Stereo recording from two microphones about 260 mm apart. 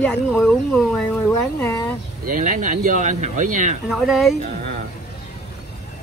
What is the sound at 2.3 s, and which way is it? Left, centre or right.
Speech, right.